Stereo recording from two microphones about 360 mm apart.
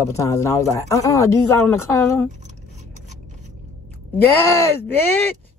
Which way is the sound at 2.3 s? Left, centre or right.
Centre.